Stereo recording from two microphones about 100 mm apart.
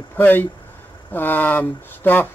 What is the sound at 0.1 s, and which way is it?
Speech, 20° left (ahead or behind).